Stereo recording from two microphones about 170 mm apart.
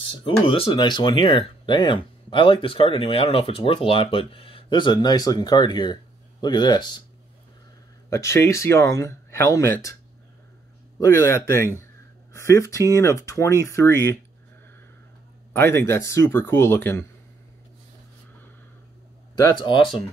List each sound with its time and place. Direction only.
0.1 s speech: 30° left (ahead or behind)
8.1 s speech: 15° left (ahead or behind)
11.0 s speech: 15° left (ahead or behind)
15.5 s speech: 15° left (ahead or behind)
19.3 s speech: 25° left (ahead or behind)